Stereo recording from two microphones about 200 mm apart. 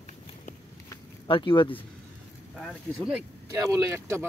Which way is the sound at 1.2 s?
25° left (ahead or behind).